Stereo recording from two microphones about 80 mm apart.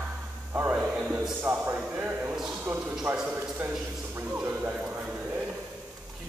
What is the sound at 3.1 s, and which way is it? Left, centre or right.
Speech, centre.